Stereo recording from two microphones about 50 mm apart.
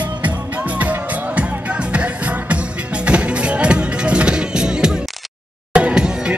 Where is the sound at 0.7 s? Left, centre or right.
Right.